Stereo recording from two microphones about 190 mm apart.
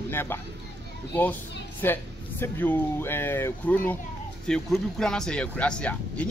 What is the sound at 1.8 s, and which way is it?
Speech, 10° left (ahead or behind).